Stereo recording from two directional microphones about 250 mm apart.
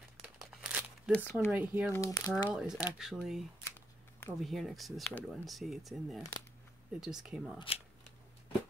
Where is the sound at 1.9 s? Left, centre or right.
Centre.